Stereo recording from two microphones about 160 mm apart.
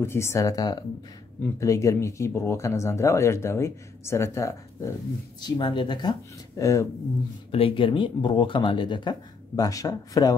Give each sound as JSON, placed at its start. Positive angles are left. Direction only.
{"t": 0.0, "sound": "speech", "side_deg": 15}
{"t": 5.4, "sound": "speech", "side_deg": 30}
{"t": 7.5, "sound": "speech", "side_deg": 35}